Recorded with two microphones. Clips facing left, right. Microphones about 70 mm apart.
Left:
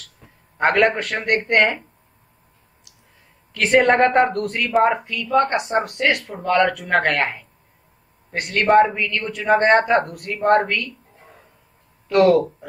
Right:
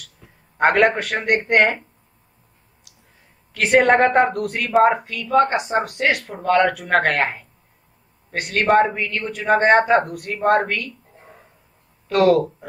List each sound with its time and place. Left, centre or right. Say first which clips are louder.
0.6 s speech: right 1 dB; centre
3.5 s speech: right 1 dB; centre
8.8 s speech: left 1 dB; centre
9.3 s speech: even; centre
12.1 s speech: left 1 dB; centre